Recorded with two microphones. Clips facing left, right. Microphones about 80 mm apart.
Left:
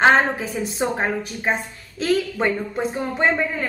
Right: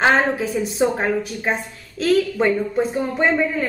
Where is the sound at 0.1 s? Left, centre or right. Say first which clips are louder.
Even; centre.